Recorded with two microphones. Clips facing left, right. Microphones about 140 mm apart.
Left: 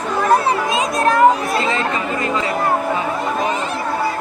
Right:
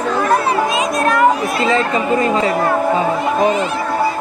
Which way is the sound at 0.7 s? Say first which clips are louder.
Right 1 dB; 25° left (ahead or behind).